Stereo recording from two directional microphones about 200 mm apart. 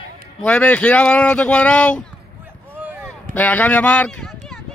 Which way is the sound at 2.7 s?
10° right (ahead or behind).